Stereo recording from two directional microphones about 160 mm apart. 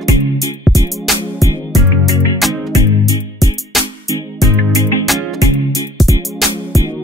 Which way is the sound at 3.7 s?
Centre (ahead or behind).